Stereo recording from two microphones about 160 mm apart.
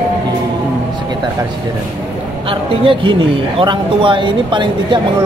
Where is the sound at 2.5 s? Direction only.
30° right (ahead or behind).